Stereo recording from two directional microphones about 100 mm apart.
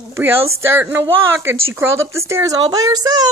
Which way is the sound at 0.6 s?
25° right (ahead or behind).